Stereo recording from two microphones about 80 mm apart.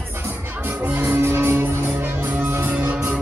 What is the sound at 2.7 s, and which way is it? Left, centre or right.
Music, centre.